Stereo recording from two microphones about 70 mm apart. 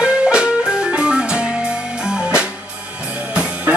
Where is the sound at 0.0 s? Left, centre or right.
Centre.